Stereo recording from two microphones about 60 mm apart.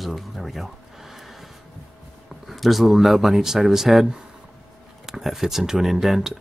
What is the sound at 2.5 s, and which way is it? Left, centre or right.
Speech, centre.